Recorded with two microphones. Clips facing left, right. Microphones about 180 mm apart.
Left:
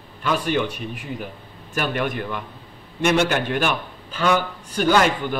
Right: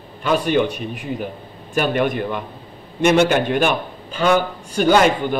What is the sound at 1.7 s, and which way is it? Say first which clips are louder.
A man's voice: right 5 dB; 20° right (ahead or behind).